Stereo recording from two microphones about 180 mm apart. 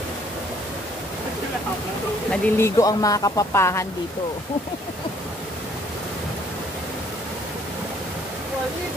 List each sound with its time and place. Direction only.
2.3 s speech: 15° left (ahead or behind)